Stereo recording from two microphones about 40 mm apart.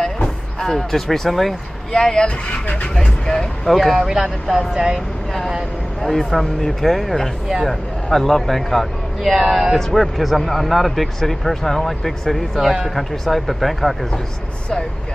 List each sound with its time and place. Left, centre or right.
0.6 s speech: centre
1.9 s speech: centre
2.2 s speech: left
3.3 s speech: centre
3.7 s speech: centre
6.0 s speech: centre
12.5 s speech: centre
12.9 s speech: centre